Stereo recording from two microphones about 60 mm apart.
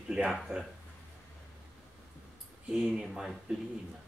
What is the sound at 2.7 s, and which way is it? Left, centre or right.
Speech, centre.